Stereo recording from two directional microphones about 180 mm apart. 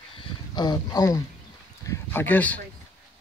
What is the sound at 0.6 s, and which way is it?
Speech, 20° left (ahead or behind).